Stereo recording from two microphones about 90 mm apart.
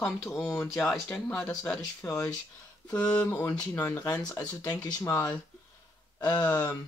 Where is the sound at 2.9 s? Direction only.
10° left (ahead or behind).